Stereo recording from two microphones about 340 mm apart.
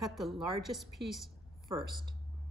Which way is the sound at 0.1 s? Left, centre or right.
Centre.